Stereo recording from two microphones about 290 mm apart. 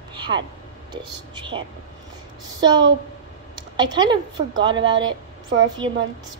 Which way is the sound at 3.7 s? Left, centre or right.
Centre.